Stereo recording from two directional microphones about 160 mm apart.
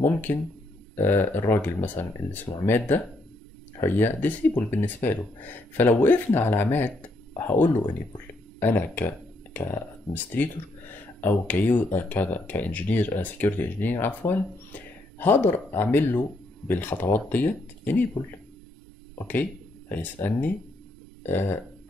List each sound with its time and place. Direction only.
0.0 s speech: 10° left (ahead or behind)
19.1 s speech: 10° left (ahead or behind)